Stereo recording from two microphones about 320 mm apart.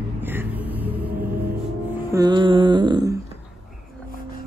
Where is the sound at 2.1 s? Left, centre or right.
Centre.